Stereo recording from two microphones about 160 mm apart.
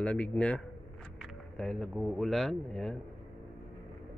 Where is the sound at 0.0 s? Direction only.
10° left (ahead or behind).